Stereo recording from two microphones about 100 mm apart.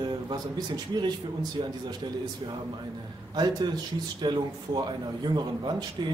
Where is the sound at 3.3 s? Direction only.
45° right (ahead or behind).